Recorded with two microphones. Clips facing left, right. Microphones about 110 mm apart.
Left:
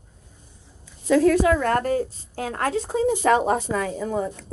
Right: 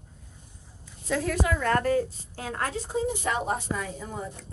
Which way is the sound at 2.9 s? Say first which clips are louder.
Left 9 dB; 90° left.